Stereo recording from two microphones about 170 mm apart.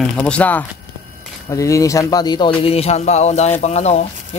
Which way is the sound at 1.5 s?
20° left (ahead or behind).